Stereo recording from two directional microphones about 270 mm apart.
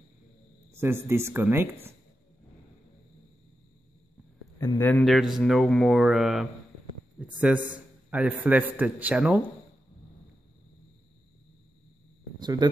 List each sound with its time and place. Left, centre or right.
0.7 s speech: centre
4.6 s a man's voice: centre
12.4 s speech: centre